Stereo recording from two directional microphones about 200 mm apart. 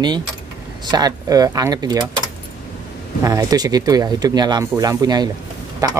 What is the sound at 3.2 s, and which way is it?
Speech, 20° right (ahead or behind).